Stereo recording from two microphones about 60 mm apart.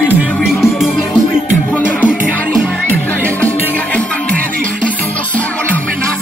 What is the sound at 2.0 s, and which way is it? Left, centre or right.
Music, centre.